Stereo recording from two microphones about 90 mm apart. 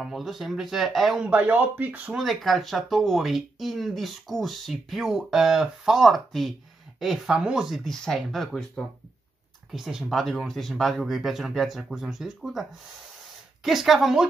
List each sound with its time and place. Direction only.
0.0 s speech: 5° right (ahead or behind)
1.2 s speech: 15° right (ahead or behind)
2.1 s speech: centre (ahead or behind)
13.7 s speech: centre (ahead or behind)